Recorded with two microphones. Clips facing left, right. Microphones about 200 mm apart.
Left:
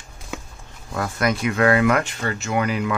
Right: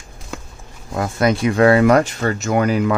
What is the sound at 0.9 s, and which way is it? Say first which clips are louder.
Speech: right 5 dB; 25° right (ahead or behind).